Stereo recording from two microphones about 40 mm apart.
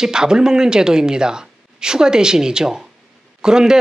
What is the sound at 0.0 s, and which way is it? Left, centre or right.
Speech, centre.